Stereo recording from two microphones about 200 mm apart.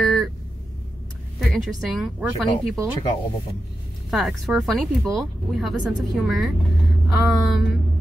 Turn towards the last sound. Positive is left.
turn(degrees=0)  # may be behind; listen again after turning